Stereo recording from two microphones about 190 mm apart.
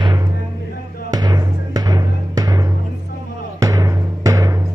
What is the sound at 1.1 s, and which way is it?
Music, 20° right (ahead or behind).